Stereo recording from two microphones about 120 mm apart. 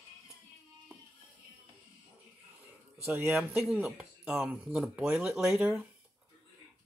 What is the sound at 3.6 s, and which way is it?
Speech, 5° right (ahead or behind).